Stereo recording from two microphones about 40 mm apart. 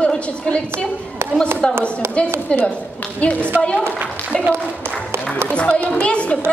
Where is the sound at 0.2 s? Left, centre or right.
Left.